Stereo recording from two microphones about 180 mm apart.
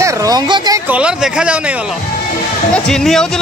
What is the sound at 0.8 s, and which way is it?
Speech, 5° right (ahead or behind).